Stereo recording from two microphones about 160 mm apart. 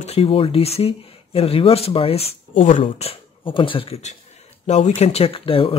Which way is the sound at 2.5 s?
55° left (ahead or behind).